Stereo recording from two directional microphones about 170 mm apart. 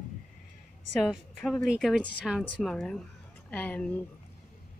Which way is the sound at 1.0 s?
Centre (ahead or behind).